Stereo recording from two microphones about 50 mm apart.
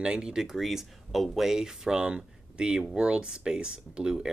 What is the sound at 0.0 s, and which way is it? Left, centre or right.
Speech, centre.